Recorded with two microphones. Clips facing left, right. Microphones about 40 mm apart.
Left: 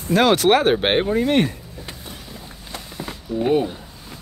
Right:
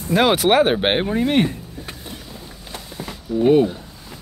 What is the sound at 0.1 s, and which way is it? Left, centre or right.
Speech, centre.